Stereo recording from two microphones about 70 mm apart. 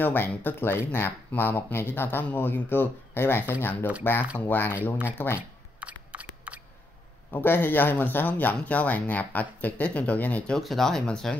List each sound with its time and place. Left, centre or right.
0.0 s speech: left
5.8 s a sound: centre
7.2 s speech: left
10.6 s speech: centre